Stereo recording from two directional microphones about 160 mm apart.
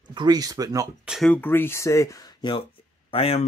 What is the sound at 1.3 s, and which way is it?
Speech, 15° left (ahead or behind).